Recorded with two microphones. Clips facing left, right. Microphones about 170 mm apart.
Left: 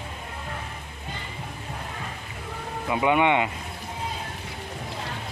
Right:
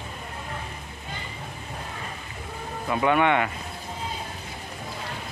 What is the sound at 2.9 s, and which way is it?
Speech, 15° left (ahead or behind).